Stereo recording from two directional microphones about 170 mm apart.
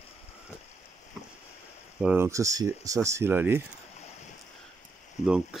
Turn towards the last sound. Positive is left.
turn(degrees=-5)  # may be behind; listen again after turning